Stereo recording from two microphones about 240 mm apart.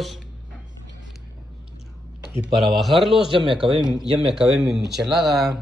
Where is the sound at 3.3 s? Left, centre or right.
Right.